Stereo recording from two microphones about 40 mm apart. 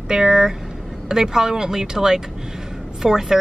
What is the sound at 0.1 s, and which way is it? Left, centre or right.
Speech, centre.